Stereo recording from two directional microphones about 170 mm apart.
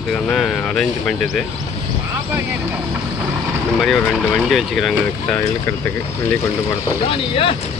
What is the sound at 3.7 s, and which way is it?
Speech, centre (ahead or behind).